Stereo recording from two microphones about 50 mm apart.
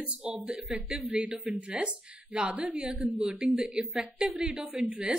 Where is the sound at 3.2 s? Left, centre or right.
Centre.